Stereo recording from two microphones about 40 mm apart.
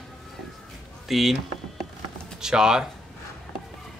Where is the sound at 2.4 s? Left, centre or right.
Centre.